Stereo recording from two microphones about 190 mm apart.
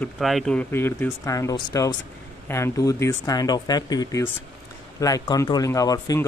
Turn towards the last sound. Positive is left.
turn(degrees=20)  # may be behind; listen again after turning